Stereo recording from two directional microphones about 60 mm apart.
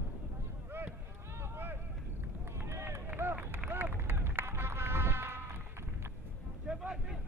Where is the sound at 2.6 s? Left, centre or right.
Right.